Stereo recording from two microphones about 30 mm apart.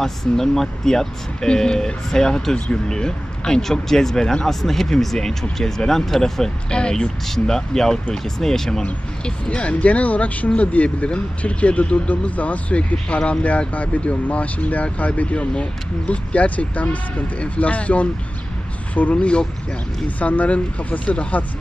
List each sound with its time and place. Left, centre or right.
0.0 s speech: centre
4.5 s speech: centre
6.7 s speech: left
7.2 s speech: centre
9.2 s speech: left
12.7 s speech: left
14.3 s speech: left
19.1 s speech: left
20.2 s speech: left